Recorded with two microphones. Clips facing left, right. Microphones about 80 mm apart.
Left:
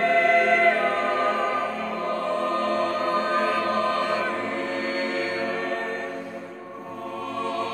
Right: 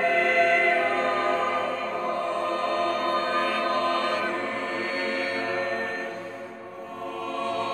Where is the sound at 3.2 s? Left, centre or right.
Centre.